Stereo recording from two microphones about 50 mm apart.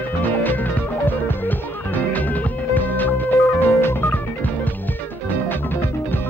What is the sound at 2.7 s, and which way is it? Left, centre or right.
Music, left.